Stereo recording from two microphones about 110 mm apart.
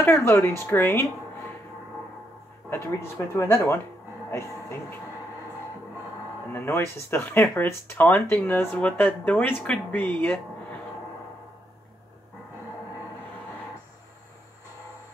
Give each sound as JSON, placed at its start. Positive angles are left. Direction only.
{"t": 0.0, "sound": "speech", "side_deg": 20}
{"t": 2.7, "sound": "speech", "side_deg": 25}
{"t": 6.5, "sound": "speech", "side_deg": 20}